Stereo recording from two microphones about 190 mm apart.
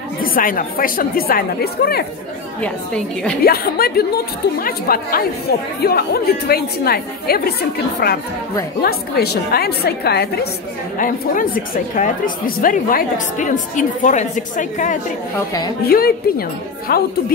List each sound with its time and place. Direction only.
0.2 s a woman's voice: 50° left (ahead or behind)
2.6 s a woman's voice: 5° left (ahead or behind)
3.4 s a woman's voice: 55° left (ahead or behind)
11.0 s a woman's voice: 45° left (ahead or behind)
15.8 s a woman's voice: 50° left (ahead or behind)